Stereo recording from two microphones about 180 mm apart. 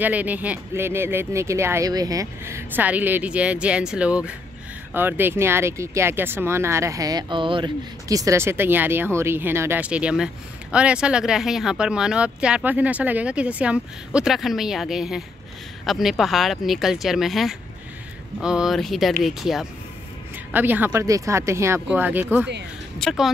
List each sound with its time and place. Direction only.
0.0 s speech: 10° right (ahead or behind)